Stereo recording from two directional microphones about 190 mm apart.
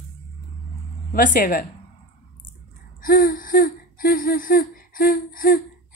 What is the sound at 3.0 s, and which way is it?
Speech, 50° left (ahead or behind).